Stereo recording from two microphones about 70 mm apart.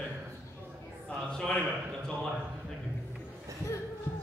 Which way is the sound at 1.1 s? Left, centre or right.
Centre.